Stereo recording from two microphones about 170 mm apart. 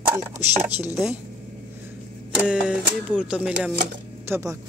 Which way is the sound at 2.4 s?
5° right (ahead or behind).